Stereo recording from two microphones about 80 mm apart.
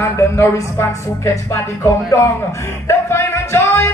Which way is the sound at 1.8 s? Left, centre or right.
Left.